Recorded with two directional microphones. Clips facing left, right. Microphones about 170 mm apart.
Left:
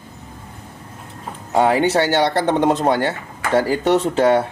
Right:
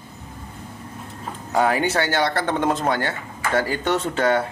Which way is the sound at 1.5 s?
30° left (ahead or behind).